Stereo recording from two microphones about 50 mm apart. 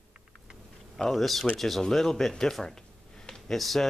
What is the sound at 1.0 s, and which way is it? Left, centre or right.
Speech, centre.